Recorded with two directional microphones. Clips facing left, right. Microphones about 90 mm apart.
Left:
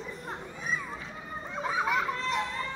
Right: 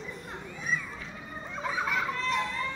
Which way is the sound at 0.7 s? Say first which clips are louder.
Right 1 dB; 20° left (ahead or behind).